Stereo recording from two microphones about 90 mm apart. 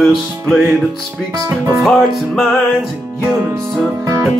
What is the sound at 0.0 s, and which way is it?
Music, centre (ahead or behind).